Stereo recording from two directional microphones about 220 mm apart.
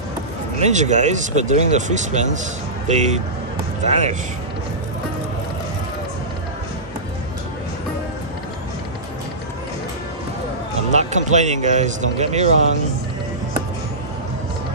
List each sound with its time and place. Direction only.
0.6 s speech: 30° right (ahead or behind)
10.9 s speech: 30° right (ahead or behind)